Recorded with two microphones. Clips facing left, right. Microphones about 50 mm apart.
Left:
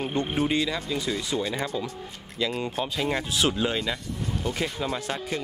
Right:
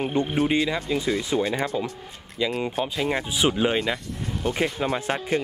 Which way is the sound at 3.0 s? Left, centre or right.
Centre.